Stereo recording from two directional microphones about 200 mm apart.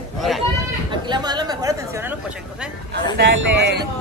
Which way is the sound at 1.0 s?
20° right (ahead or behind).